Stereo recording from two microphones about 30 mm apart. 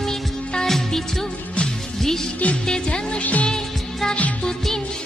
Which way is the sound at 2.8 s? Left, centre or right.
Left.